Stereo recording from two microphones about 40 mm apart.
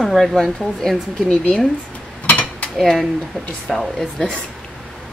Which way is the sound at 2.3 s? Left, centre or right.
Left.